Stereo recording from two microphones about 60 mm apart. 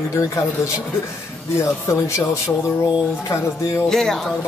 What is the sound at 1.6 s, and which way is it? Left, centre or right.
Speech, left.